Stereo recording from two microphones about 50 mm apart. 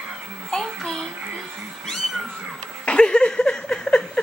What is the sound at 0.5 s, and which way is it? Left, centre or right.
Child singing, centre.